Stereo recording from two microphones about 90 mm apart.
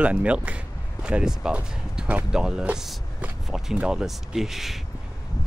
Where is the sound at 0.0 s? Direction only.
15° right (ahead or behind).